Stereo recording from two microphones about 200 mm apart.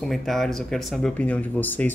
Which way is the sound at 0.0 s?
Centre (ahead or behind).